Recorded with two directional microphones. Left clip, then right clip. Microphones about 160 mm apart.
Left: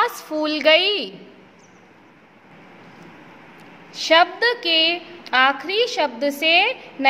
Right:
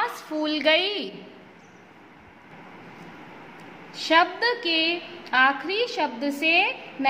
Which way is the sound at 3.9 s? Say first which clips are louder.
Left 5 dB; 30° left (ahead or behind).